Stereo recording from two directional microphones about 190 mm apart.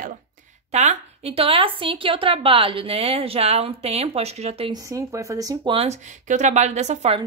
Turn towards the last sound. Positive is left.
turn(degrees=-35)  # may be behind; listen again after turning